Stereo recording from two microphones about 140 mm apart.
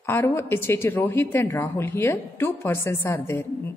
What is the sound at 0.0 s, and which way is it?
A woman's voice, 15° left (ahead or behind).